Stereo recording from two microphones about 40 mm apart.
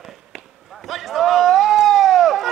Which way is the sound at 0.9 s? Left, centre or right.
Centre.